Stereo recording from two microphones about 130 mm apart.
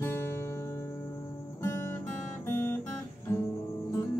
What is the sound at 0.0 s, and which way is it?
Music, 20° left (ahead or behind).